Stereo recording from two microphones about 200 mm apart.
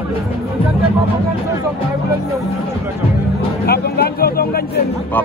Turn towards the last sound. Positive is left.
turn(degrees=50)  # may be behind; listen again after turning